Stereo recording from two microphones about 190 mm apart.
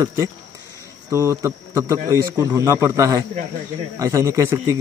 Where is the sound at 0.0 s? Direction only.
15° right (ahead or behind).